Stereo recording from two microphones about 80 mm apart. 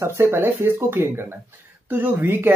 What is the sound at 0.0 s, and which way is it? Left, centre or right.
Speech, right.